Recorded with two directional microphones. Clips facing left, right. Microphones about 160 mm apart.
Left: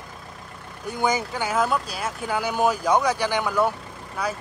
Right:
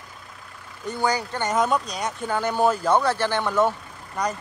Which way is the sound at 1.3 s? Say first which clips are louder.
Right 1 dB; 5° left (ahead or behind).